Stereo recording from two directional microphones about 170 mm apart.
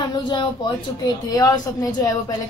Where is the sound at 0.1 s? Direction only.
25° left (ahead or behind).